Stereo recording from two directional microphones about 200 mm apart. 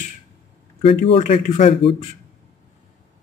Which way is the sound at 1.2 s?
35° left (ahead or behind).